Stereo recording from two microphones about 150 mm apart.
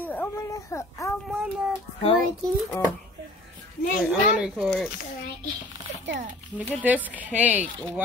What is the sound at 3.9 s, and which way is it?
Speech, 5° right (ahead or behind).